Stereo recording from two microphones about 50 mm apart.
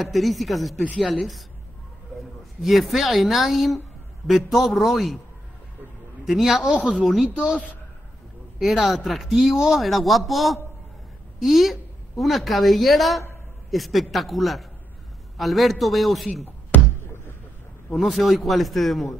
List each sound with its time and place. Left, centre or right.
0.0 s speech: centre
2.6 s speech: centre
6.2 s speech: centre
8.5 s a woman's voice: centre
16.7 s a sound: left
17.9 s speech: centre